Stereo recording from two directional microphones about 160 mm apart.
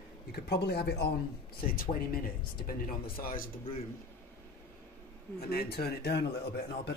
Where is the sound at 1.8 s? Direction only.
65° left (ahead or behind).